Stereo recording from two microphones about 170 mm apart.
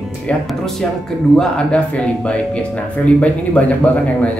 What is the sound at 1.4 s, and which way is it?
Speech, 5° left (ahead or behind).